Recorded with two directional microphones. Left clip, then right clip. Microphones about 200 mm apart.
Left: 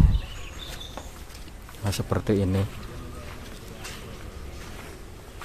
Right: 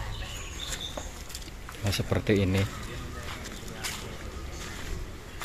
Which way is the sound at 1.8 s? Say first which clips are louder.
Left 1 dB; 15° left (ahead or behind).